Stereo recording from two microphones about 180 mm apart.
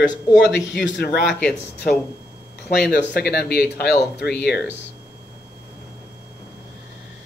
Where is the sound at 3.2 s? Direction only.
60° left (ahead or behind).